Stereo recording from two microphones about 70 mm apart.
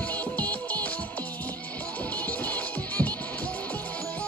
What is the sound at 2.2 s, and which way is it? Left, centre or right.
Music, left.